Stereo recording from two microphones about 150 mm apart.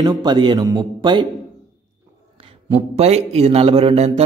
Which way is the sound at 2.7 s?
45° right (ahead or behind).